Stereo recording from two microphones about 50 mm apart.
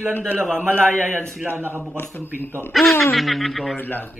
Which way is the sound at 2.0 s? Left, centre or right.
Left.